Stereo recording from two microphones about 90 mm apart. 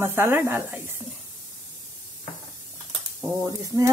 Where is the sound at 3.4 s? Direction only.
40° right (ahead or behind).